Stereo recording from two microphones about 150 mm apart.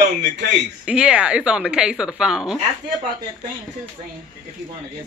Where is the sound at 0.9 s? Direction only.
5° right (ahead or behind).